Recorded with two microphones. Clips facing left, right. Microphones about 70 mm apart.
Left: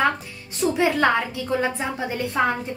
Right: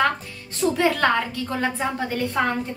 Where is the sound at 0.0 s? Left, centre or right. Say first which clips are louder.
Even; centre.